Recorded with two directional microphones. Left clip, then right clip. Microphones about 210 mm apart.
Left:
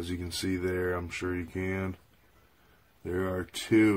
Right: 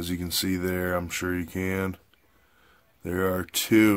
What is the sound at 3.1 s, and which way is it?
Speech, 50° right (ahead or behind).